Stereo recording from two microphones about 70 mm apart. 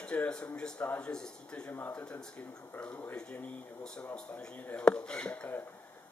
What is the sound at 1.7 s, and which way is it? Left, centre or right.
Speech, left.